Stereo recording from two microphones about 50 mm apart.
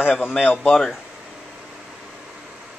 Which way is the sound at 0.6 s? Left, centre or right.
Centre.